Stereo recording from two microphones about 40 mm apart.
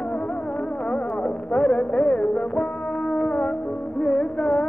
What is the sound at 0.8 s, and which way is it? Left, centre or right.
Music, left.